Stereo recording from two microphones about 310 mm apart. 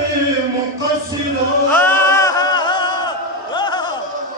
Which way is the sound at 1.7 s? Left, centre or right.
Centre.